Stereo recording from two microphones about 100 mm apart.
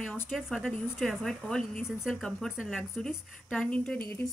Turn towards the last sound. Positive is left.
turn(degrees=10)  # may be behind; listen again after turning